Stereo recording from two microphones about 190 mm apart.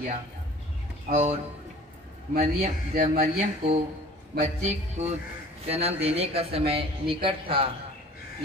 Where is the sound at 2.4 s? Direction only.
35° right (ahead or behind).